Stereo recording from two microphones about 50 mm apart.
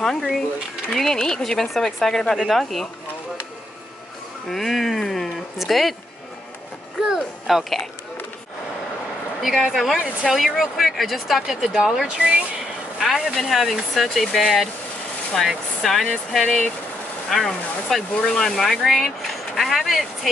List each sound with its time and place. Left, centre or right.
0.0 s speech: centre
4.5 s speech: centre
7.4 s speech: centre
9.4 s speech: centre
13.0 s speech: centre